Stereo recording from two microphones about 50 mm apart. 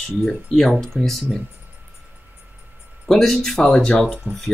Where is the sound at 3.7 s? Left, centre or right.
Left.